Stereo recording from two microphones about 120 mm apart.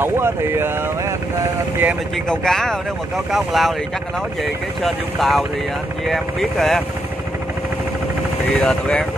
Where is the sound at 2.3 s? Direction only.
5° left (ahead or behind).